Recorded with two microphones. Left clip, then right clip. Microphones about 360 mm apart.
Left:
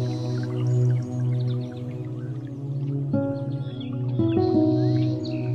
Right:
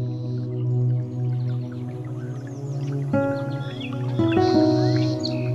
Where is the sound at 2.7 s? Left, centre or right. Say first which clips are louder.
Right 4 dB; right.